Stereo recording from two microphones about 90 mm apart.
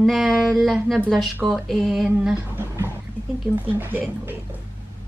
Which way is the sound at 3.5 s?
20° right (ahead or behind).